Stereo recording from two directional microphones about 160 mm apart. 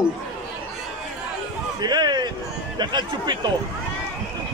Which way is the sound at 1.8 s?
25° right (ahead or behind).